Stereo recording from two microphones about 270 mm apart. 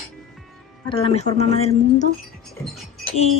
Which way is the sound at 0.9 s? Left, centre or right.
Left.